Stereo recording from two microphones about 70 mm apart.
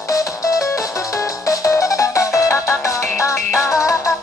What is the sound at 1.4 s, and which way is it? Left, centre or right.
Music, left.